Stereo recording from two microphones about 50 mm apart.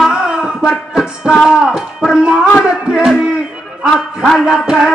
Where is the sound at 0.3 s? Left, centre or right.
Centre.